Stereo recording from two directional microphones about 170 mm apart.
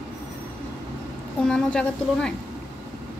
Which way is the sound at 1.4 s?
5° left (ahead or behind).